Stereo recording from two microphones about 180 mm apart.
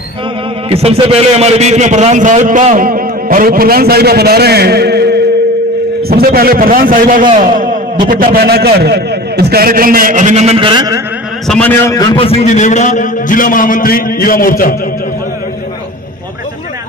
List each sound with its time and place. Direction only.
0.7 s a man's voice: 35° right (ahead or behind)
11.4 s a man's voice: 5° left (ahead or behind); by 14.8 s 55° left (ahead or behind)